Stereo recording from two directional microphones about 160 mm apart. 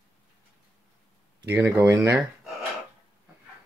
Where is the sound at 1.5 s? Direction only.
20° right (ahead or behind).